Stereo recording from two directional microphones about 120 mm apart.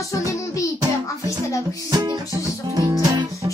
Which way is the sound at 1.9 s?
30° right (ahead or behind).